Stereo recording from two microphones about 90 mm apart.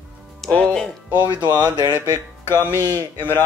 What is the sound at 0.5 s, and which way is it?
Speech, 10° left (ahead or behind).